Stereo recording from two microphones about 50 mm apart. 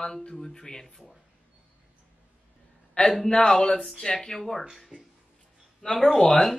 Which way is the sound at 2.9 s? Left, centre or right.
Centre.